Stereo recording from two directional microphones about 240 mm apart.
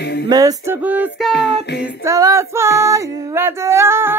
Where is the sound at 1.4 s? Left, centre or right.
Centre.